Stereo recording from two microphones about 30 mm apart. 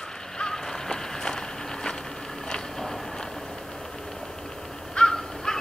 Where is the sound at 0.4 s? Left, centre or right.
Centre.